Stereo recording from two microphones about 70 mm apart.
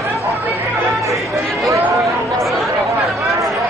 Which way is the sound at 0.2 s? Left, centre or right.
Right.